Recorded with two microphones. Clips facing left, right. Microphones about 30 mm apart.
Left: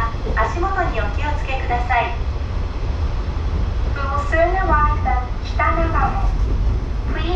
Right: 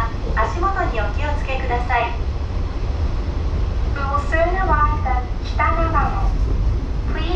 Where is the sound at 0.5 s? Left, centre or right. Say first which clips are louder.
Even; centre.